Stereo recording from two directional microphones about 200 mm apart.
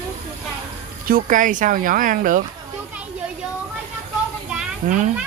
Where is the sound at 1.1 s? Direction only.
45° right (ahead or behind).